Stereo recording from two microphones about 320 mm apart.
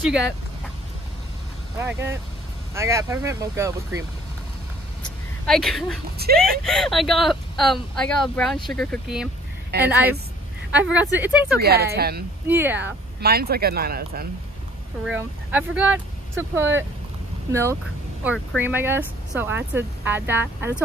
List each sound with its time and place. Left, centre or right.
1.8 s speech: centre
5.5 s speech: centre
9.7 s a woman's voice: right
10.7 s speech: centre
11.6 s speech: right
12.4 s speech: centre
13.2 s speech: right
15.0 s speech: centre